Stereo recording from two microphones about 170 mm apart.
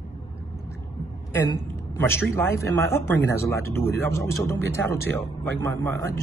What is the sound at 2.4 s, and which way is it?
Speech, 15° left (ahead or behind).